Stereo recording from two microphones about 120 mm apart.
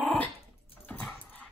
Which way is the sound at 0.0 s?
10° left (ahead or behind).